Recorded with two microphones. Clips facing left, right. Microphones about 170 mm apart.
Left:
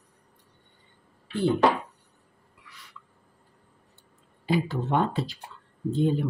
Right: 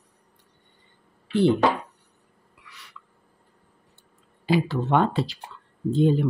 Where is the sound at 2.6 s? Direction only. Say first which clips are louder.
Right 2 dB; 75° right (ahead or behind).